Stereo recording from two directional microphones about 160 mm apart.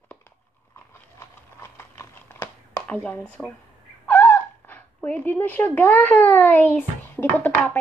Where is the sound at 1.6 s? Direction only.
15° left (ahead or behind).